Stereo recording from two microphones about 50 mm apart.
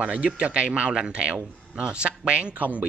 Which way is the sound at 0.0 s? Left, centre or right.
Right.